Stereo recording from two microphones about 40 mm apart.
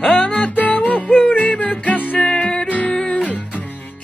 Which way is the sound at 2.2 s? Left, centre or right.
Left.